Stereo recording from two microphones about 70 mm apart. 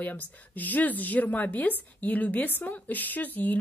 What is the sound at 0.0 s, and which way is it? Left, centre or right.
Speech, left.